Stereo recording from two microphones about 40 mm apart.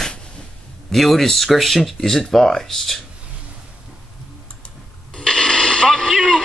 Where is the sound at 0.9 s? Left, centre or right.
Centre.